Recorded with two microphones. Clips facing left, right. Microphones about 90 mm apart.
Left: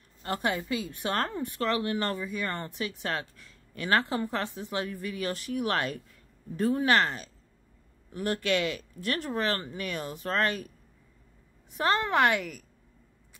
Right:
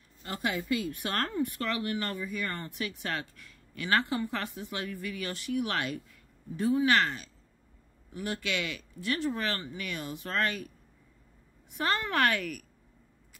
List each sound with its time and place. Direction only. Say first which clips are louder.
0.2 s a woman's voice: left 4 dB; 50° left (ahead or behind)
0.6 s speech: right 1 dB; 25° left (ahead or behind); by 10.7 s 40° left (ahead or behind)
11.7 s speech: left 4 dB; 30° left (ahead or behind)